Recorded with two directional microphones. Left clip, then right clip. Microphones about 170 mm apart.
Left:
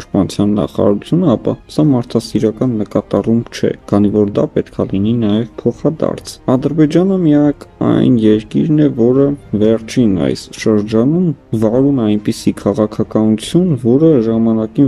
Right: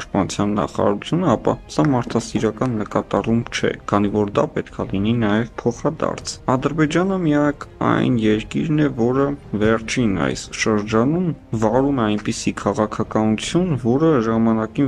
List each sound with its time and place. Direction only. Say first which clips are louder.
0.1 s speech: left 6 dB; 30° left (ahead or behind)